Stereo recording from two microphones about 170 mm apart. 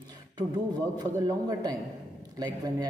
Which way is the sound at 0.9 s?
20° right (ahead or behind).